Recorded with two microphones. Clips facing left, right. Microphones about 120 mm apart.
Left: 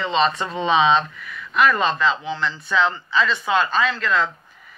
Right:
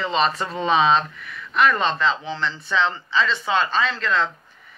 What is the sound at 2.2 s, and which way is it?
Speech, centre (ahead or behind).